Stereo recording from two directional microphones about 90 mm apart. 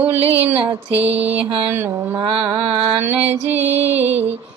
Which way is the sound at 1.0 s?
90° right.